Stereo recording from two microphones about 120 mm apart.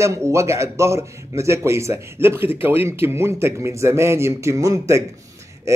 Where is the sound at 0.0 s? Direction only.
25° right (ahead or behind).